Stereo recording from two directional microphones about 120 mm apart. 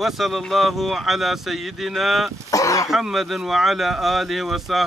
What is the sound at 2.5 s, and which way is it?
Speech, 25° left (ahead or behind).